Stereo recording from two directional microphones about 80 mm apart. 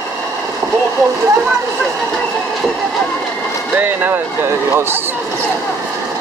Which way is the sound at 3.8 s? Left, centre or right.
Right.